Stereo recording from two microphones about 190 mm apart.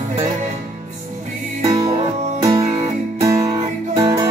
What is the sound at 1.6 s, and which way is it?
Music, 20° right (ahead or behind).